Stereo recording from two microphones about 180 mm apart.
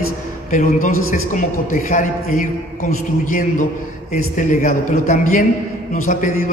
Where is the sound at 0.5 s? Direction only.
45° left (ahead or behind).